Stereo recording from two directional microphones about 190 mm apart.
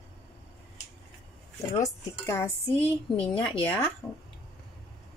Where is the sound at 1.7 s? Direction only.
15° left (ahead or behind).